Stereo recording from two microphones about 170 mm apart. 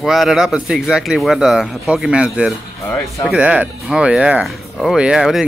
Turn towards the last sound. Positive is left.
turn(degrees=0)  # may be behind; listen again after turning